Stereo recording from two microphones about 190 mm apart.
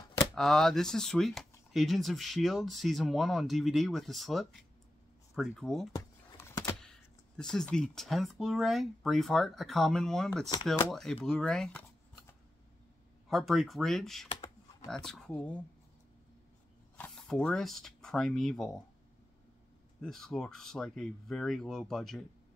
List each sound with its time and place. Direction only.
0.3 s speech: centre (ahead or behind)
5.9 s a sound: 15° left (ahead or behind)
6.8 s speech: 5° left (ahead or behind)
13.3 s speech: centre (ahead or behind)
16.9 s speech: 5° left (ahead or behind)
20.0 s speech: centre (ahead or behind)